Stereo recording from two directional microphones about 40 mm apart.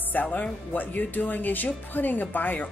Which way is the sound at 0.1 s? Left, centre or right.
Left.